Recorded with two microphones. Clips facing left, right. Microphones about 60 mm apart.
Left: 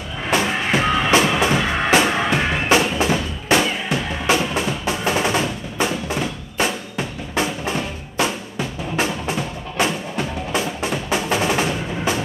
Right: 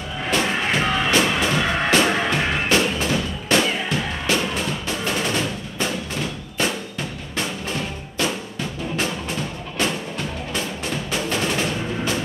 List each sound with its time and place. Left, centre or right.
0.3 s music: centre
6.1 s drum: centre
8.9 s music: centre